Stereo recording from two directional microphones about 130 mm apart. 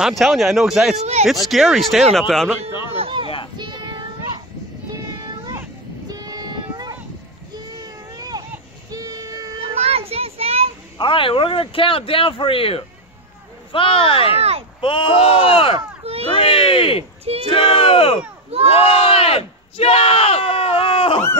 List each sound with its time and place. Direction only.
0.0 s speech: centre (ahead or behind)
3.0 s a sound: 40° right (ahead or behind)
3.5 s child singing: 35° right (ahead or behind)
6.0 s child singing: 30° right (ahead or behind)
7.5 s baby cry: 35° right (ahead or behind)
8.9 s child singing: 30° right (ahead or behind)
9.8 s child singing: 50° right (ahead or behind)
11.0 s speech: 40° left (ahead or behind)
16.0 s a sound: 50° right (ahead or behind)
16.3 s speech: 40° left (ahead or behind)
17.2 s speech: 50° right (ahead or behind)
17.5 s speech: 45° left (ahead or behind)
18.7 s a sound: 45° left (ahead or behind)